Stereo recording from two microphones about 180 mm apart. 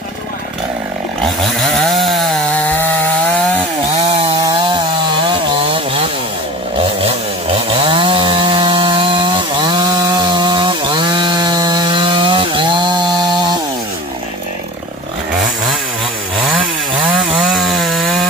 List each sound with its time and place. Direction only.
1.6 s chainsaw: centre (ahead or behind)
7.7 s chainsaw: 30° right (ahead or behind)
17.5 s wood: centre (ahead or behind)